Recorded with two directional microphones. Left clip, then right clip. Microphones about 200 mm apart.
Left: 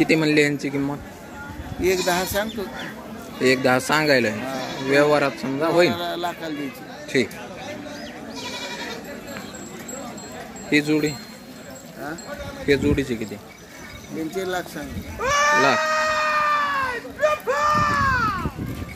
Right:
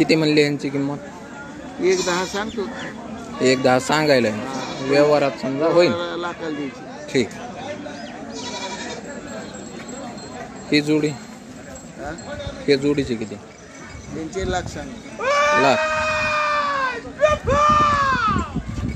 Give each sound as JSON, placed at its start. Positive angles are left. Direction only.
{"t": 0.0, "sound": "speech", "side_deg": 0}
{"t": 2.0, "sound": "speech", "side_deg": 55}
{"t": 3.3, "sound": "speech", "side_deg": 0}
{"t": 5.9, "sound": "a man's voice", "side_deg": 50}
{"t": 7.1, "sound": "speech", "side_deg": 0}
{"t": 10.7, "sound": "speech", "side_deg": 0}
{"t": 12.6, "sound": "speech", "side_deg": 0}
{"t": 14.3, "sound": "speech", "side_deg": 40}
{"t": 15.1, "sound": "goat", "side_deg": -45}
{"t": 15.8, "sound": "baby cry", "side_deg": -35}